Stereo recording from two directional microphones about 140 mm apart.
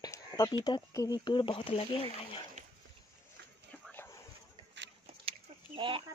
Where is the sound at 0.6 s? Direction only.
25° left (ahead or behind).